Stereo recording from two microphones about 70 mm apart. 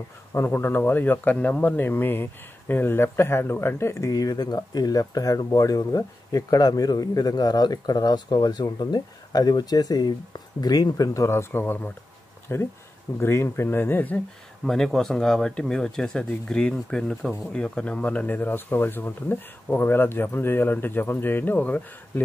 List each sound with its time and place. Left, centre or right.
0.3 s speech: left
4.1 s speech: left
11.1 s speech: left
14.6 s speech: centre; by 22.2 s left